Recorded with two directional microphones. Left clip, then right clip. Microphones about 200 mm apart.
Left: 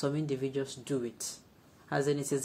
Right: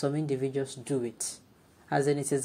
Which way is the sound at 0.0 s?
5° right (ahead or behind).